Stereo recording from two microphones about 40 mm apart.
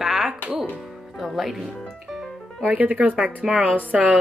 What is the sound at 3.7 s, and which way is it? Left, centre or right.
Speech, right.